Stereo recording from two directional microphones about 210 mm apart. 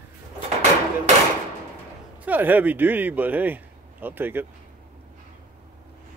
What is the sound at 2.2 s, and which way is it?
Speech, 10° right (ahead or behind).